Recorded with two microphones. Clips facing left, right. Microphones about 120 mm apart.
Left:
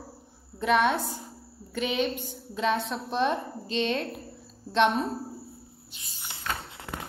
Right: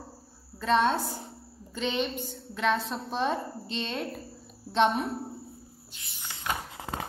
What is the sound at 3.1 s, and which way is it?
Speech, 15° left (ahead or behind).